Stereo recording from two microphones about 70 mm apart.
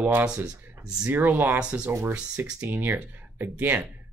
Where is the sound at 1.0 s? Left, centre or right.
Right.